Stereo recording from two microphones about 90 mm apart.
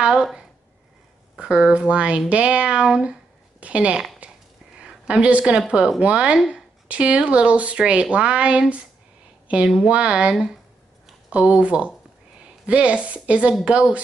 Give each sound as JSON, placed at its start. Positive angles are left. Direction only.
{"t": 0.0, "sound": "a woman's voice", "side_deg": -5}
{"t": 4.2, "sound": "a sound", "side_deg": -15}
{"t": 4.7, "sound": "a woman's voice", "side_deg": -10}